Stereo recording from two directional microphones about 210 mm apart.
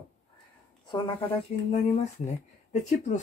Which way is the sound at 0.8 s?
20° left (ahead or behind).